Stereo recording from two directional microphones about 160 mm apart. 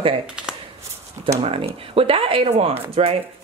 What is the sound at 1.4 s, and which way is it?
Speech, 35° right (ahead or behind).